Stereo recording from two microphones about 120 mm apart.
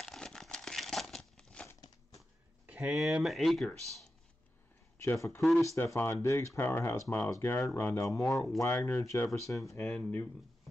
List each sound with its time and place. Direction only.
0.0 s crumpling: 5° left (ahead or behind)
2.6 s speech: 10° right (ahead or behind)
5.0 s speech: 25° left (ahead or behind)
9.8 s speech: 5° left (ahead or behind)